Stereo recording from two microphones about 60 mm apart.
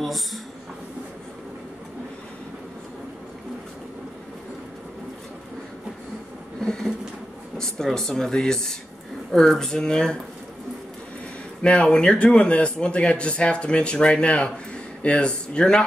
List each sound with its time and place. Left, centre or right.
0.0 s speech: centre
6.6 s a sound: centre
7.5 s speech: centre
11.6 s speech: centre